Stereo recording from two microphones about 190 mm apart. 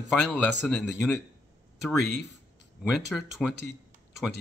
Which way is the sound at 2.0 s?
65° left (ahead or behind).